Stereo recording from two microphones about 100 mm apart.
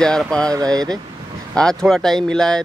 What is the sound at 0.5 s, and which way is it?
Speech, 40° right (ahead or behind).